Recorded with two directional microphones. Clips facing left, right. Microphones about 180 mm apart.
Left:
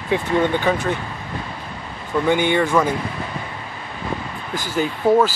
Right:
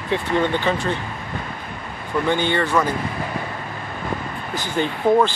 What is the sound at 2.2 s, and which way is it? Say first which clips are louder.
Speech: left 3 dB; 15° left (ahead or behind).